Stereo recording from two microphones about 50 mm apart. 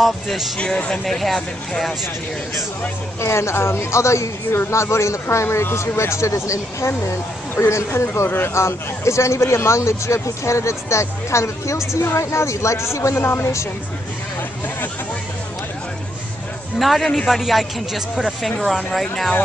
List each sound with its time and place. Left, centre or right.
0.0 s speech: centre
3.2 s speech: left
7.5 s speech: left
16.7 s speech: centre